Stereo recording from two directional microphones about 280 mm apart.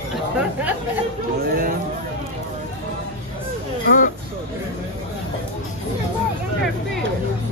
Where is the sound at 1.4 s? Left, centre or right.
Right.